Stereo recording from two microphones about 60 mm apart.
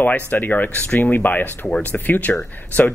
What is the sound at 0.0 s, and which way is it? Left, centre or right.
Speech, left.